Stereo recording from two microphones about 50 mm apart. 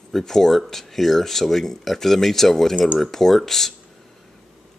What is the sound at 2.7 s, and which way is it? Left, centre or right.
Speech, right.